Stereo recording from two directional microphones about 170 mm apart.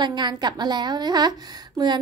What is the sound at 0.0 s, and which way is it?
A woman's voice, 25° right (ahead or behind).